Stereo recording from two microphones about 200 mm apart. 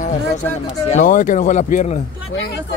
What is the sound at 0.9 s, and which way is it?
A man's voice, 40° left (ahead or behind).